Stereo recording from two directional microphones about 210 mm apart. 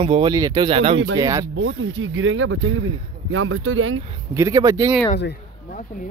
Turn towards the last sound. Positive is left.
turn(degrees=-10)  # may be behind; listen again after turning